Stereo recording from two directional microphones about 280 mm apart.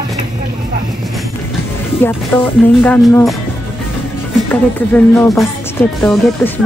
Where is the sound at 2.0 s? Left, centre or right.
Centre.